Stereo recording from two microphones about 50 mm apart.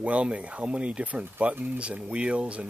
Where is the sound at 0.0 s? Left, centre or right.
Right.